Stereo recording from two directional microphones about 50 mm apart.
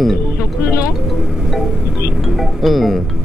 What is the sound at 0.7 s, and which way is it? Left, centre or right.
Vehicle, left.